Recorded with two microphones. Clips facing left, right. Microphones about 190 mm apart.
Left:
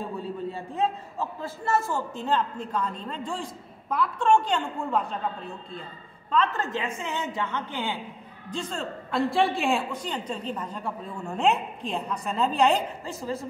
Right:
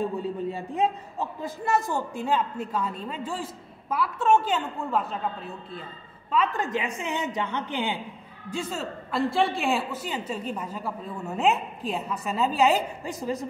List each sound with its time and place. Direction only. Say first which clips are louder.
0.2 s a man's voice: right 3 dB; 15° right (ahead or behind)
13.0 s a man's voice: right 2 dB; 15° right (ahead or behind)